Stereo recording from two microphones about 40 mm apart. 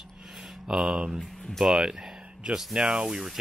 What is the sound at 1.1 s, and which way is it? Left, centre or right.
Speech, centre.